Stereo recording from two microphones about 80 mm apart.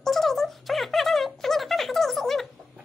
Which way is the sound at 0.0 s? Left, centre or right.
Centre.